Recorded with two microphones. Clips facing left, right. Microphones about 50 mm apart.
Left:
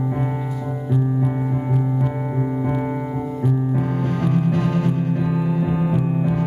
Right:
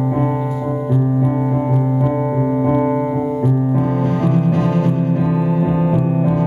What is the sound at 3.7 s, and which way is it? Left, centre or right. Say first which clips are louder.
Music: right 5 dB; centre.